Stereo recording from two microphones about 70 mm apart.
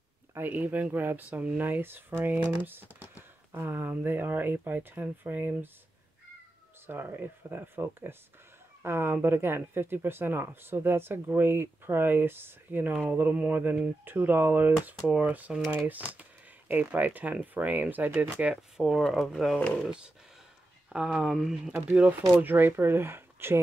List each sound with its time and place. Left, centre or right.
0.3 s speech: right
6.9 s speech: right
18.5 s speech: centre
19.6 s speech: centre
20.9 s speech: centre
21.8 s speech: centre
22.4 s speech: right